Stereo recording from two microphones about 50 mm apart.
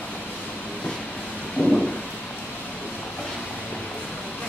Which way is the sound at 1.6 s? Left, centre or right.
Right.